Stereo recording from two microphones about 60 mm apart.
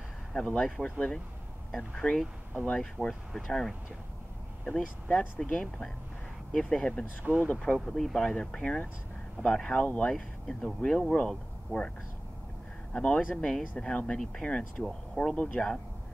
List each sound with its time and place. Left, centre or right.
0.3 s speech: centre
3.4 s speech: centre
7.7 s speech: centre
8.4 s speech: centre
12.9 s speech: centre
15.3 s speech: left